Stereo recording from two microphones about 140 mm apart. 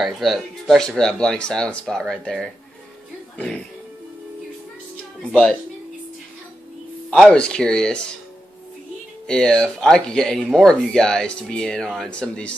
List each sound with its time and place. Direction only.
0.0 s speech: centre (ahead or behind)
5.3 s speech: 10° left (ahead or behind)
7.1 s speech: 5° left (ahead or behind)
9.3 s speech: 5° left (ahead or behind)